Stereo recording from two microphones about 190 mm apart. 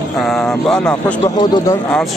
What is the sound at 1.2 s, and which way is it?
Speech, 20° left (ahead or behind).